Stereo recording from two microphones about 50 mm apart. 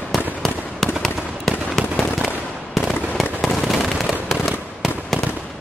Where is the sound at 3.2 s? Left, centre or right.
Centre.